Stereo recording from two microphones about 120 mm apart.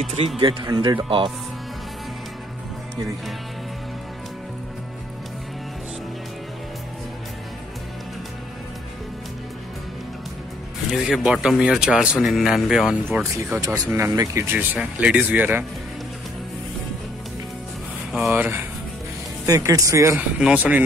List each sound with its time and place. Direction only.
0.4 s speech: 40° right (ahead or behind)
10.9 s speech: 5° right (ahead or behind)
13.2 s speech: 25° right (ahead or behind)
18.1 s speech: 10° right (ahead or behind)
19.4 s speech: 30° right (ahead or behind)
20.2 s speech: 10° right (ahead or behind)